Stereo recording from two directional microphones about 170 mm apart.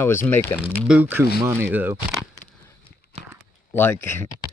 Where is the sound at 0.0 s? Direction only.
15° left (ahead or behind).